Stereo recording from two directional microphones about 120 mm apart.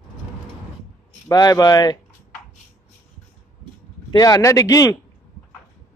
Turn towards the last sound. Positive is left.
turn(degrees=30)  # may be behind; listen again after turning